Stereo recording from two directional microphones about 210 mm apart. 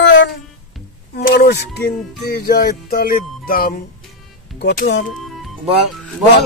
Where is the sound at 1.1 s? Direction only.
45° left (ahead or behind).